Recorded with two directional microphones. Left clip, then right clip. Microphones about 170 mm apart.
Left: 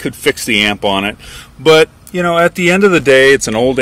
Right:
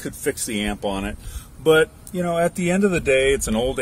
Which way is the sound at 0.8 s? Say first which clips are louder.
Left 12 dB; 15° left (ahead or behind).